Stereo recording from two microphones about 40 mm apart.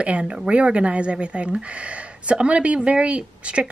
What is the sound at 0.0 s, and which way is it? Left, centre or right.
Speech, right.